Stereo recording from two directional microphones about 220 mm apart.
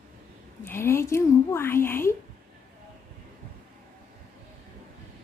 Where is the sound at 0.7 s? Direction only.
10° left (ahead or behind).